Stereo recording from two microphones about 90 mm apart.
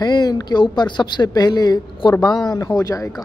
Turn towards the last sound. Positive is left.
turn(degrees=40)  # may be behind; listen again after turning